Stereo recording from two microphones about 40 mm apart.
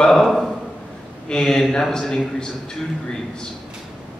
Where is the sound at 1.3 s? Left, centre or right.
Centre.